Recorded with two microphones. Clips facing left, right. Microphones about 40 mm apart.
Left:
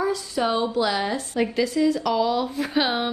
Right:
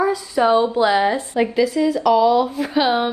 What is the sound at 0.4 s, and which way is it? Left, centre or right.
A woman's voice, right.